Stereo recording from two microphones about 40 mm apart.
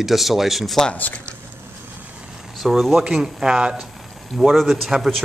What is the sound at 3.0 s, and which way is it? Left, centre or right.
Speech, centre.